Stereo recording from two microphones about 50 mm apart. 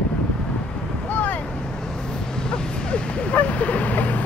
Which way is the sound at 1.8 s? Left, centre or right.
Centre.